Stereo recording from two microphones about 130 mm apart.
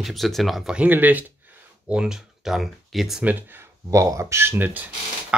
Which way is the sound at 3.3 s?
15° right (ahead or behind).